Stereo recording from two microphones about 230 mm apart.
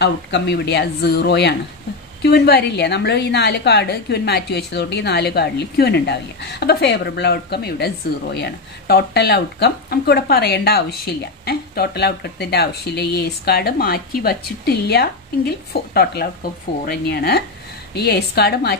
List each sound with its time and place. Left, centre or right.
0.0 s a woman's voice: left